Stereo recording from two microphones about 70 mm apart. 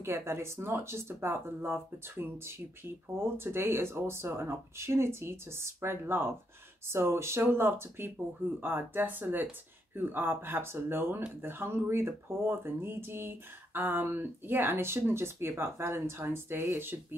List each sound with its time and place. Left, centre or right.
0.0 s speech: right